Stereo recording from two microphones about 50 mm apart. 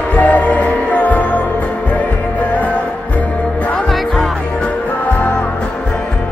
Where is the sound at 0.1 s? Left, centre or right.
Left.